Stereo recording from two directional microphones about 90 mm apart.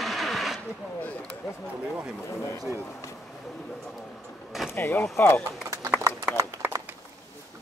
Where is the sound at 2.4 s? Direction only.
30° left (ahead or behind).